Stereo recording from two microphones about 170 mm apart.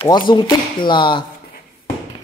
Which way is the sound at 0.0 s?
30° left (ahead or behind).